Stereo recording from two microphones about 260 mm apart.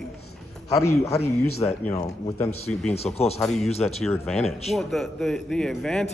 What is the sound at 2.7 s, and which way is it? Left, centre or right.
A man's voice, centre.